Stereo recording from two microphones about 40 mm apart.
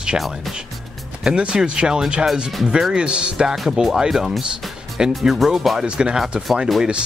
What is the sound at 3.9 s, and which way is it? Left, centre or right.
Speech, centre.